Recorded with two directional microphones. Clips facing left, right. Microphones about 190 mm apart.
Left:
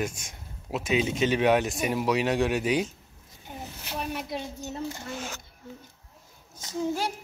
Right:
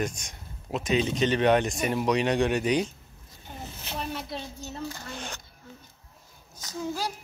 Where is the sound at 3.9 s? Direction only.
15° left (ahead or behind).